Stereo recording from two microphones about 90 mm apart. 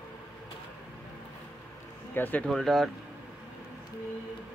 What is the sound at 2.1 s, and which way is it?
Speech, 20° left (ahead or behind).